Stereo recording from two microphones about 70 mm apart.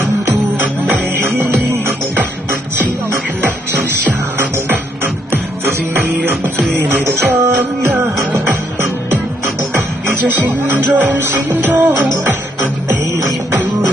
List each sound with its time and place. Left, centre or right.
0.6 s music: right
3.4 s music: right
6.1 s music: right
10.0 s music: right
13.5 s music: right